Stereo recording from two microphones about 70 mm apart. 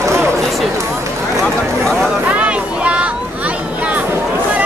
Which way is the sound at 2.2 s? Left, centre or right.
Centre.